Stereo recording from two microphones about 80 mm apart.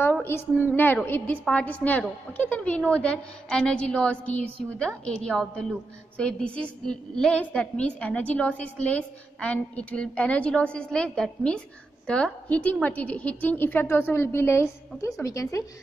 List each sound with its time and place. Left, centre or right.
0.2 s a woman's voice: left